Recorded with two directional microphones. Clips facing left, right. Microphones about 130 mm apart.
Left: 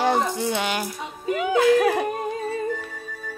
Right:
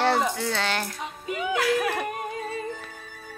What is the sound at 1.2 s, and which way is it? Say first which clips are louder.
Speech: left 7 dB; 35° left (ahead or behind).